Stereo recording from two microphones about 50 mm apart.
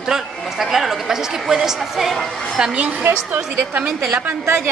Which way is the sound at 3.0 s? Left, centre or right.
Right.